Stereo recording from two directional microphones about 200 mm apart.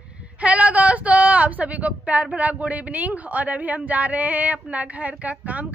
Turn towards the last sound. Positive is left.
turn(degrees=-5)  # may be behind; listen again after turning